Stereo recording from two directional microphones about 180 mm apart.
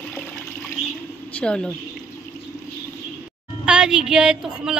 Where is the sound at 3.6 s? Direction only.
5° right (ahead or behind).